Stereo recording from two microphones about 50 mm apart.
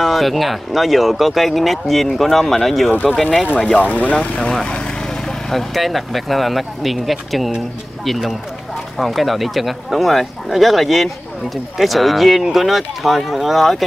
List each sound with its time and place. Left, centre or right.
0.0 s speech: centre
2.9 s speech: left
5.5 s speech: centre